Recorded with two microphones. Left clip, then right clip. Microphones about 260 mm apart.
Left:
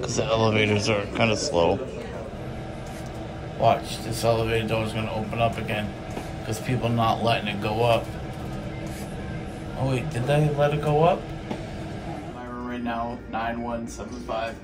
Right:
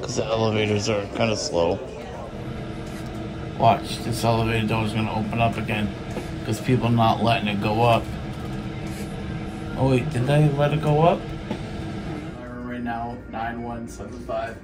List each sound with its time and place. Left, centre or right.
0.0 s a man's voice: centre
3.6 s a man's voice: centre
9.8 s a man's voice: centre